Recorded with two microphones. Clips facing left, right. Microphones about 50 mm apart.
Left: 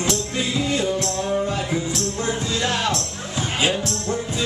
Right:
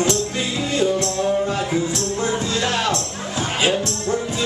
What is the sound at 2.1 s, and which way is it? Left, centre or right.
Music, centre.